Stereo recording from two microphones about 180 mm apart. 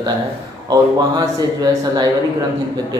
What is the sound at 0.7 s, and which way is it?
Speech, 20° right (ahead or behind).